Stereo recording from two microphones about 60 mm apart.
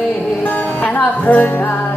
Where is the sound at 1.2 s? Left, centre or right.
Left.